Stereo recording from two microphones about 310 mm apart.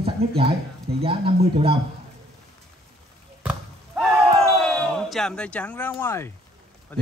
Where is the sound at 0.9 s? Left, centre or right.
Centre.